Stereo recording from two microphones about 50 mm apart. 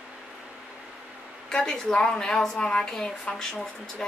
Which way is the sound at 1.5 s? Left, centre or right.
Centre.